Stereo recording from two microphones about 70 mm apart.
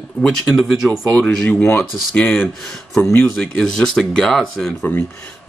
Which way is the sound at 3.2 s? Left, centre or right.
Centre.